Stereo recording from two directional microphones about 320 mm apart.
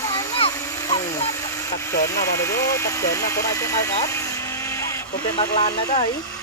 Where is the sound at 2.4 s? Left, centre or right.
Centre.